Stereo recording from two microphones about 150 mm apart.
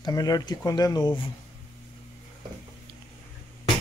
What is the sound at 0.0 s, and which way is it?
Speech, 25° left (ahead or behind).